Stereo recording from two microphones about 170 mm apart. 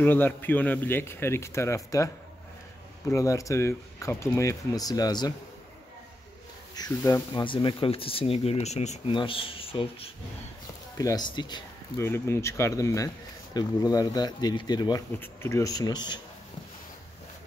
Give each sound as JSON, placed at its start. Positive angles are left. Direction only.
{"t": 0.0, "sound": "a man's voice", "side_deg": 10}
{"t": 3.1, "sound": "speech", "side_deg": 20}
{"t": 6.7, "sound": "speech", "side_deg": 20}
{"t": 7.3, "sound": "speech", "side_deg": 30}
{"t": 11.0, "sound": "speech", "side_deg": 20}
{"t": 12.0, "sound": "speech", "side_deg": 15}